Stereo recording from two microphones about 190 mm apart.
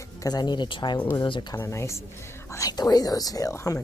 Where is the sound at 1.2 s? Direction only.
20° left (ahead or behind).